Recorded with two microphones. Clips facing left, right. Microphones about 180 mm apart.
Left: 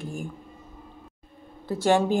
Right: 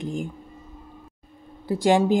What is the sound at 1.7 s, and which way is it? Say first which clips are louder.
Speech: right 2 dB; 15° right (ahead or behind).